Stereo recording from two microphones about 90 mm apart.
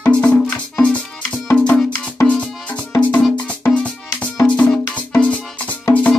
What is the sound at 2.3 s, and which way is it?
Music, 15° left (ahead or behind).